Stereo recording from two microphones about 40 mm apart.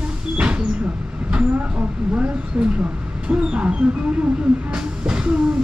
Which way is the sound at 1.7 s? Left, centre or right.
Right.